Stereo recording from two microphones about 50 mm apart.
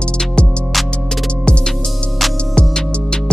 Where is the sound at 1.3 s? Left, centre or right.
Centre.